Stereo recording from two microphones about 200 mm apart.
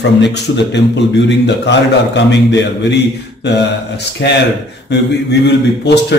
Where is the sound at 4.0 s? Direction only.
55° left (ahead or behind).